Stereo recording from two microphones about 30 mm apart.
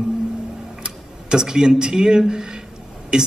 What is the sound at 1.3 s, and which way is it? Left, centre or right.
A man's voice, right.